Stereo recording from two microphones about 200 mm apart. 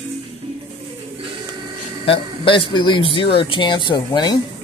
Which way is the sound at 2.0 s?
25° left (ahead or behind).